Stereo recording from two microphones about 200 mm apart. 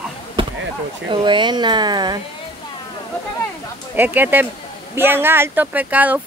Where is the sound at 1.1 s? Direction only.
25° right (ahead or behind).